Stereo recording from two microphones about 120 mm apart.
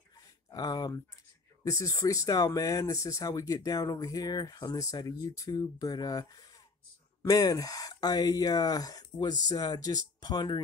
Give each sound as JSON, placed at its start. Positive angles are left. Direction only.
{"t": 0.5, "sound": "speech", "side_deg": 30}